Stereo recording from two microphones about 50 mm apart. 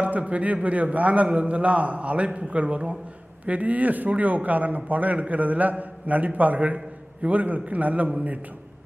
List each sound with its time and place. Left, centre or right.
0.0 s a man's voice: right